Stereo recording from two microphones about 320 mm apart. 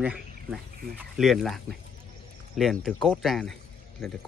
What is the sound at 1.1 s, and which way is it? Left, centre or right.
Speech, centre.